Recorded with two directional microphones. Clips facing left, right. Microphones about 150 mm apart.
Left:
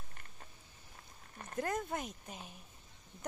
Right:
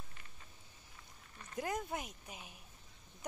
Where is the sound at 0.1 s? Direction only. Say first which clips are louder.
Left 3 dB; 50° left (ahead or behind).